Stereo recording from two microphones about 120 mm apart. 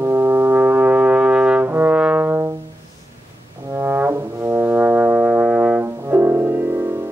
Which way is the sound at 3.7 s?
15° right (ahead or behind).